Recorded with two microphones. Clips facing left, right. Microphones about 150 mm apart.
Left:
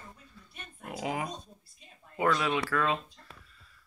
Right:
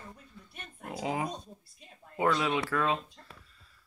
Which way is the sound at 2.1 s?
20° right (ahead or behind).